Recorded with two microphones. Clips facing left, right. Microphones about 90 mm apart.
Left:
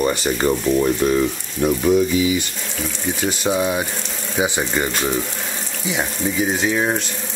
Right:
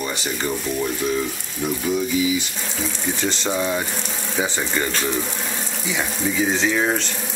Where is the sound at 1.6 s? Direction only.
60° left (ahead or behind).